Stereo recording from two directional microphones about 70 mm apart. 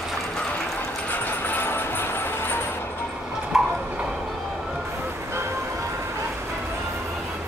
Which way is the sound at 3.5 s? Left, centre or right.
Centre.